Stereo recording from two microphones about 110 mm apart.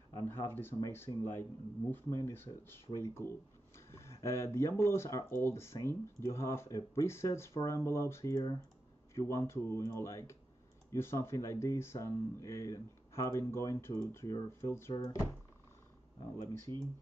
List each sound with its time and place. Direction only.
0.3 s speech: 20° left (ahead or behind)
8.4 s speech: 40° left (ahead or behind)
9.1 s speech: 25° left (ahead or behind)
15.0 s speech: 40° left (ahead or behind)